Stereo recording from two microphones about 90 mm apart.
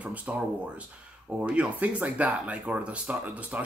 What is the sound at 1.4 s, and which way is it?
Speech, 15° right (ahead or behind).